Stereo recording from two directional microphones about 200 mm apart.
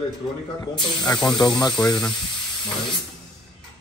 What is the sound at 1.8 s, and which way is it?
Speech, 5° left (ahead or behind).